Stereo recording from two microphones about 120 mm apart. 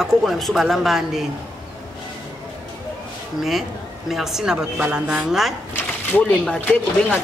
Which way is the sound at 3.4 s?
Centre (ahead or behind).